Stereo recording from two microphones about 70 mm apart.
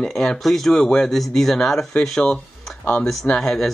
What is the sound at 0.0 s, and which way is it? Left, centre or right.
Speech, centre.